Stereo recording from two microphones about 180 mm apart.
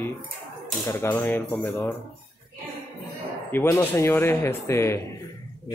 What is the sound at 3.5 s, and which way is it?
Speech, 15° left (ahead or behind).